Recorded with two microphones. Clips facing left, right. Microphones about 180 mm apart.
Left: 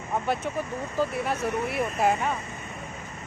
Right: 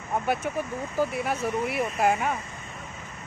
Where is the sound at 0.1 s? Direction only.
Centre (ahead or behind).